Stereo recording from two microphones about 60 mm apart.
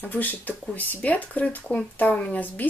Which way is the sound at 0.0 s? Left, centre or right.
Left.